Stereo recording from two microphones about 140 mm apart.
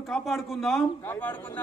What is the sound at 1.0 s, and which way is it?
Speech, 15° left (ahead or behind).